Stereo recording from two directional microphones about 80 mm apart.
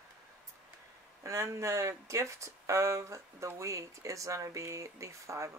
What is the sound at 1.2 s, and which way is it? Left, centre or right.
Speech, right.